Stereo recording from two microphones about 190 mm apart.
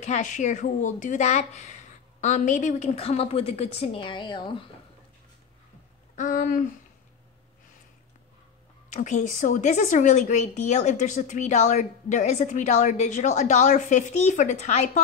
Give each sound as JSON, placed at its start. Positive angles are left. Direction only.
{"t": 0.0, "sound": "a woman's voice", "side_deg": 40}
{"t": 6.1, "sound": "speech", "side_deg": 45}
{"t": 8.9, "sound": "a woman's voice", "side_deg": 40}